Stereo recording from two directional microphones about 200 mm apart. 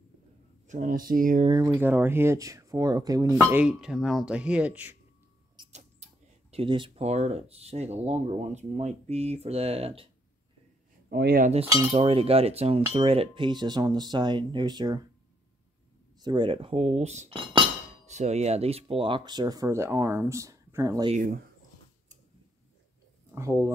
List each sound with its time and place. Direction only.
0.7 s speech: 40° right (ahead or behind)
1.5 s speech: 15° right (ahead or behind)
5.7 s mouse: 35° right (ahead or behind)
6.5 s speech: 25° right (ahead or behind)
11.1 s speech: 50° right (ahead or behind)
11.6 s speech: 15° right (ahead or behind)
11.9 s speech: 30° right (ahead or behind)
16.2 s speech: 20° right (ahead or behind)
21.1 s speech: 40° right (ahead or behind)
23.3 s speech: 15° right (ahead or behind)